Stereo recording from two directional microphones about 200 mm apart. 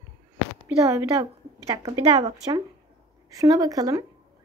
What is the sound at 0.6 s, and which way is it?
Speech, 15° right (ahead or behind).